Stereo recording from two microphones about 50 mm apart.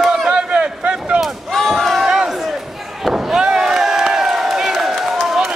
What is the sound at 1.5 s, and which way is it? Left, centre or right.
Battle cry, centre.